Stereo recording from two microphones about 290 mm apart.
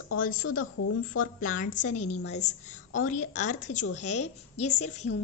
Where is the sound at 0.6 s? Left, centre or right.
Left.